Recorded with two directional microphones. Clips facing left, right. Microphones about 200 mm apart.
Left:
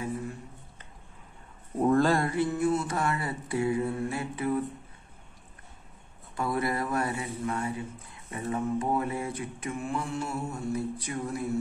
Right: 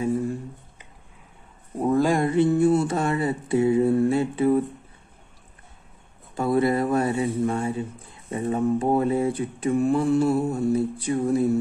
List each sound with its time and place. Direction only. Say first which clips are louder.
1.8 s mantra: right 3 dB; 10° right (ahead or behind); by 4.6 s 30° right (ahead or behind)
6.3 s mantra: right 8 dB; 25° right (ahead or behind)